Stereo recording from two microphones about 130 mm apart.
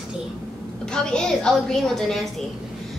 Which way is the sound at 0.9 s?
5° left (ahead or behind).